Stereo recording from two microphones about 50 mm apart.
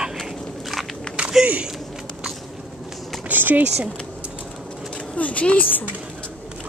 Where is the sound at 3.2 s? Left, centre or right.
Right.